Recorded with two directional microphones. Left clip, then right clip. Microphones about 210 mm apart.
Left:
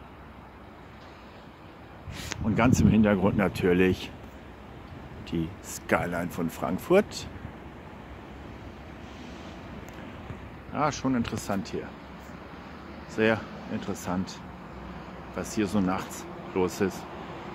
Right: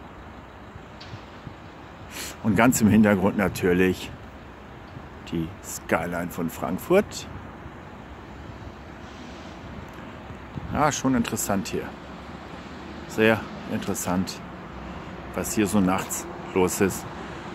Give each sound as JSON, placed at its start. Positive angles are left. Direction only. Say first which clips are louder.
{"t": 2.4, "sound": "speech", "louder": "right 4 dB", "side_deg": -5}
{"t": 5.3, "sound": "speech", "louder": "right 2 dB", "side_deg": 0}
{"t": 10.7, "sound": "speech", "louder": "right 5 dB", "side_deg": -5}
{"t": 13.1, "sound": "speech", "louder": "right 4 dB", "side_deg": -5}